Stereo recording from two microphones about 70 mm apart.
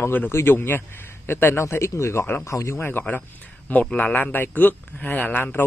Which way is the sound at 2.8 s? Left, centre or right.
Left.